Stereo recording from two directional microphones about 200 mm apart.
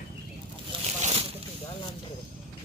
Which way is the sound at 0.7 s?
25° right (ahead or behind).